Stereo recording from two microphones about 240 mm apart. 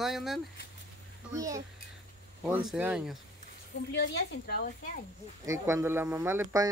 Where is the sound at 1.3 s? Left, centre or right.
Centre.